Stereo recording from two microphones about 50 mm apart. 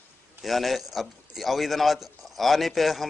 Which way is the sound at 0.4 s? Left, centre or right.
Centre.